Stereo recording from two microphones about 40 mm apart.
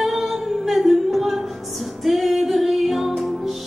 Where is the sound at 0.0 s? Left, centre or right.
Centre.